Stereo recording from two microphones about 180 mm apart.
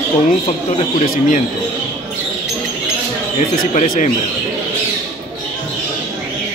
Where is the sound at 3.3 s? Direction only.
45° left (ahead or behind).